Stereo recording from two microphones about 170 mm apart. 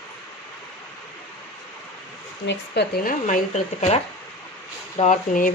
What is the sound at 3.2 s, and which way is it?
Speech, 45° left (ahead or behind).